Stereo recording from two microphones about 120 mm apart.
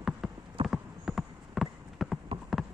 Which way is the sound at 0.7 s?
Centre (ahead or behind).